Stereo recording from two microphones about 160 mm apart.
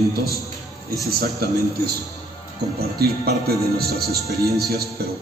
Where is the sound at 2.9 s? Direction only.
75° right (ahead or behind).